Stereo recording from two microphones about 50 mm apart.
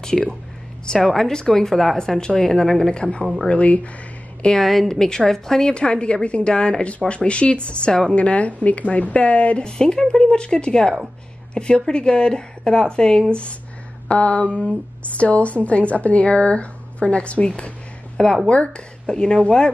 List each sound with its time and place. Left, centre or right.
0.1 s speech: centre
0.8 s a woman's voice: centre
2.9 s speech: centre
4.6 s a woman's voice: centre; by 17.5 s left
17.6 s a sound: centre
18.5 s a woman's voice: left